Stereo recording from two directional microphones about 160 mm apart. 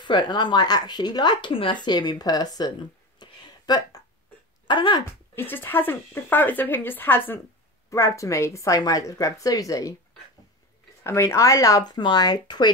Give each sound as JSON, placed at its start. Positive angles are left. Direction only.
{"t": 0.0, "sound": "speech", "side_deg": 25}
{"t": 3.2, "sound": "a sound", "side_deg": 25}
{"t": 4.6, "sound": "speech", "side_deg": 30}
{"t": 5.3, "sound": "speech", "side_deg": 15}
{"t": 11.1, "sound": "speech", "side_deg": 15}